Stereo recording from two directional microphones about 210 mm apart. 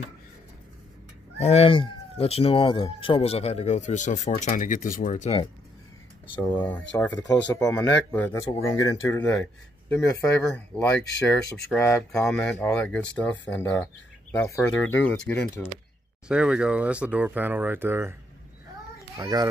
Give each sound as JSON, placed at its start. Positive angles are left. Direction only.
{"t": 1.4, "sound": "speech", "side_deg": 30}
{"t": 6.4, "sound": "speech", "side_deg": 20}
{"t": 16.3, "sound": "speech", "side_deg": -5}
{"t": 19.1, "sound": "a child's voice", "side_deg": -20}